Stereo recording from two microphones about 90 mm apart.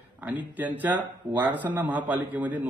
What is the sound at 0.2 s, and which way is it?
A man's voice, 20° right (ahead or behind).